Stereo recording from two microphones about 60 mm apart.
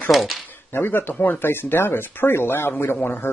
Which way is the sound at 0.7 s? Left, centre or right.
Left.